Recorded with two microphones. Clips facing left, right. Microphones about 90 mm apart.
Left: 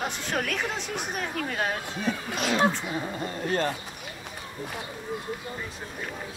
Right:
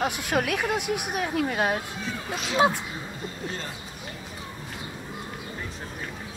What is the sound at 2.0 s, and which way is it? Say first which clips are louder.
Speech: left 4 dB; 55° left (ahead or behind).